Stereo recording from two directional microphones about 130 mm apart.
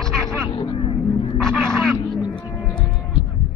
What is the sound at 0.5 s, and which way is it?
Vehicle, 40° left (ahead or behind).